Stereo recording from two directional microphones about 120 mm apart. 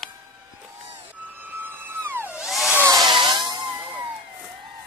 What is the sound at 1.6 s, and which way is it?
Music, 20° right (ahead or behind).